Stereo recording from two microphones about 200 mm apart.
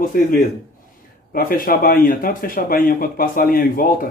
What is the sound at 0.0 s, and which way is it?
Speech, 45° left (ahead or behind).